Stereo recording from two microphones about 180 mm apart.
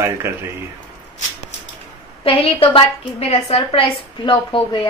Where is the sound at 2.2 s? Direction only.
30° left (ahead or behind).